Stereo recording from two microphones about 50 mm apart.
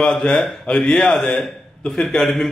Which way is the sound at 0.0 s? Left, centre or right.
Centre.